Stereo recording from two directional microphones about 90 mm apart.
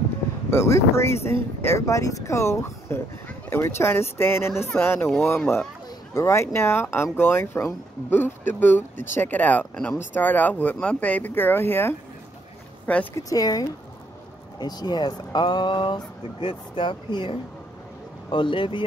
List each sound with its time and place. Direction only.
0.5 s speech: 30° left (ahead or behind)
13.1 s speech: 45° left (ahead or behind); by 18.9 s 70° left (ahead or behind)